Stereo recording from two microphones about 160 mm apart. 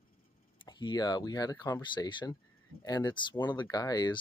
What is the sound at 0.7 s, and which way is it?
Speech, 25° left (ahead or behind).